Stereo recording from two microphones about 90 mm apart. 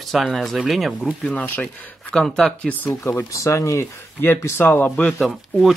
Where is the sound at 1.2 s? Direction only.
10° left (ahead or behind).